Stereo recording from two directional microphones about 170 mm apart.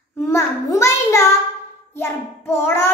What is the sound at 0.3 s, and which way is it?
A child's voice, 15° left (ahead or behind).